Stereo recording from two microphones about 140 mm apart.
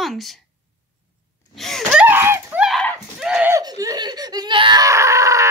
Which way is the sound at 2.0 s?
15° right (ahead or behind).